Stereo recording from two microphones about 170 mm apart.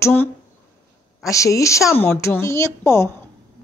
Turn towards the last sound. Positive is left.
turn(degrees=15)  # may be behind; listen again after turning